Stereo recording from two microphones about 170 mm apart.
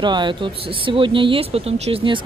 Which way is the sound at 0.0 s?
25° right (ahead or behind).